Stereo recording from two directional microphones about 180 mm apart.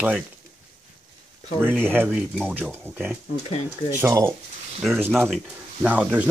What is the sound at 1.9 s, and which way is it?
Speech, 10° right (ahead or behind).